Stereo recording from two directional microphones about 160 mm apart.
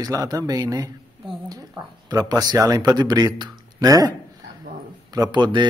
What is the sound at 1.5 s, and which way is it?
Speech, 20° right (ahead or behind).